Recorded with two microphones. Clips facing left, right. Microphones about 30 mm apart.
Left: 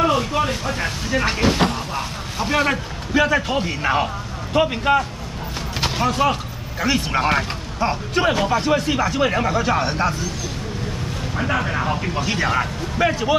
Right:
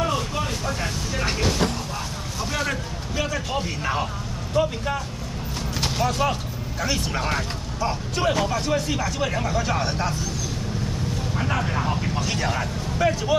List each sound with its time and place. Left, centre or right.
0.0 s vehicle: left
3.5 s speech: left
4.6 s speech: left
5.8 s a sound: left
6.8 s speech: left
11.3 s speech: left